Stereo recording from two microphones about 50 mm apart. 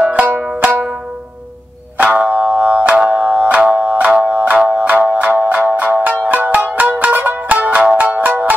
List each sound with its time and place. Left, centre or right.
0.0 s banjo: right
2.0 s music: right